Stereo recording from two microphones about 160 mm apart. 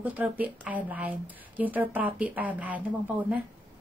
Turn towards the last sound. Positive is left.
turn(degrees=-10)  # may be behind; listen again after turning